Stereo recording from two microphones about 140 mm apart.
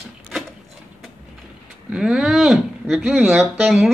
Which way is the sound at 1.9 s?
5° right (ahead or behind).